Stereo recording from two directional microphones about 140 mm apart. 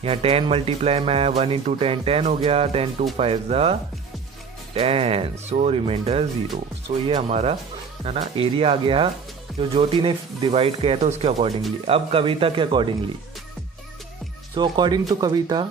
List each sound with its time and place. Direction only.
0.0 s speech: 45° right (ahead or behind)
4.7 s speech: 45° right (ahead or behind)
14.5 s speech: 35° right (ahead or behind)